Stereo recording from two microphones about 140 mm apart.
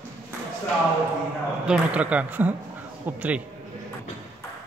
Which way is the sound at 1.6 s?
10° right (ahead or behind).